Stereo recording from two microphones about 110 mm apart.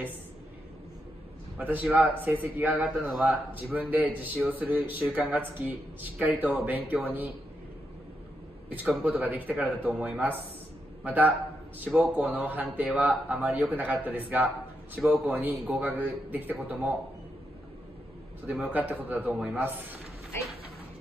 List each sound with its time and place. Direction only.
1.6 s a man's voice: 15° right (ahead or behind)
8.7 s a man's voice: 15° right (ahead or behind)
18.5 s a man's voice: 15° right (ahead or behind)